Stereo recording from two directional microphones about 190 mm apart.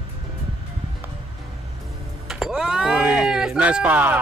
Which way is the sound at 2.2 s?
Centre (ahead or behind).